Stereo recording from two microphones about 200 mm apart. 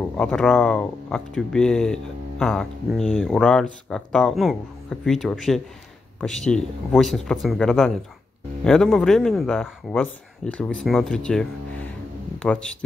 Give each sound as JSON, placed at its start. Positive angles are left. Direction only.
{"t": 0.2, "sound": "speech", "side_deg": 5}